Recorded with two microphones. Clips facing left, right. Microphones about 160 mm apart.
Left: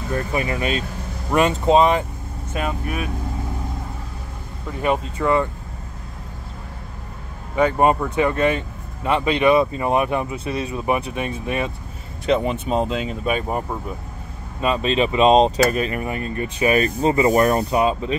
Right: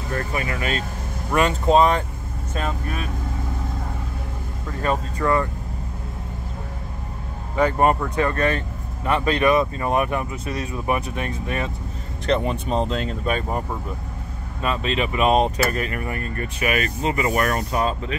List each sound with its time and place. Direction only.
0.3 s speech: 25° left (ahead or behind)
2.5 s speech: 15° left (ahead or behind)
4.6 s speech: 10° left (ahead or behind)
7.5 s speech: 15° left (ahead or behind)
12.3 s speech: 5° left (ahead or behind)